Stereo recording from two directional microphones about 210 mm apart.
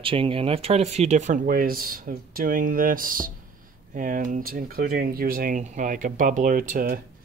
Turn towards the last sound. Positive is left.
turn(degrees=-40)  # may be behind; listen again after turning